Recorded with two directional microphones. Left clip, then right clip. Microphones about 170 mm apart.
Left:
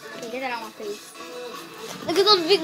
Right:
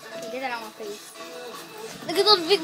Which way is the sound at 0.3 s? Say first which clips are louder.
Left 1 dB; centre (ahead or behind).